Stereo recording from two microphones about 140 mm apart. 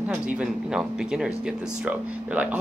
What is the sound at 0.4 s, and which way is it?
Speech, 5° right (ahead or behind).